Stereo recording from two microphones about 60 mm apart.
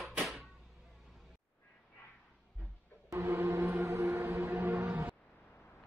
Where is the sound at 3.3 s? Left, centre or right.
Right.